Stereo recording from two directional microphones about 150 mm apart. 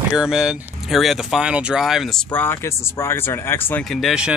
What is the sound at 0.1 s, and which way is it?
Speech, 5° right (ahead or behind).